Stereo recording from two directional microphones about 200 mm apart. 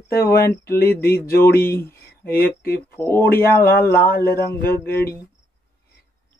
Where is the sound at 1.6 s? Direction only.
10° left (ahead or behind).